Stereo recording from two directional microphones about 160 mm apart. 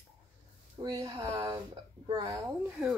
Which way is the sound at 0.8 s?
25° right (ahead or behind).